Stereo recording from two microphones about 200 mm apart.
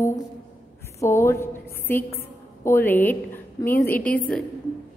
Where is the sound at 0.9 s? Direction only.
15° left (ahead or behind).